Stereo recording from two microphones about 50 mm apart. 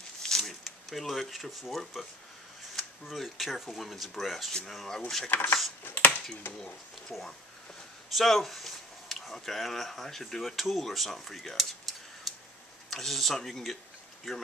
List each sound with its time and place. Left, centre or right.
0.2 s a sound: centre
2.7 s speech: centre
5.3 s speech: left
5.9 s a sound: left
7.1 s speech: centre
8.1 s a sound: centre
9.3 s speech: centre
12.3 s tick-tock: centre
12.9 s speech: centre